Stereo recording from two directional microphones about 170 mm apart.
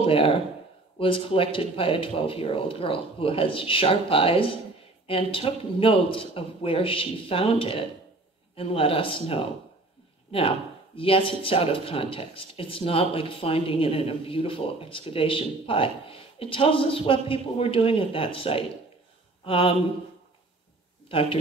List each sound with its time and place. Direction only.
0.0 s speech: 35° left (ahead or behind)
11.0 s speech: 30° left (ahead or behind)
21.1 s speech: 35° left (ahead or behind)